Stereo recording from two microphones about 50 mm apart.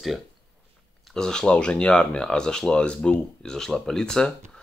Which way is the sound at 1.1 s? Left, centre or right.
Centre.